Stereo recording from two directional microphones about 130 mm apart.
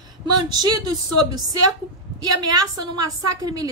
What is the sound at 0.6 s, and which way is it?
Speech, 30° right (ahead or behind).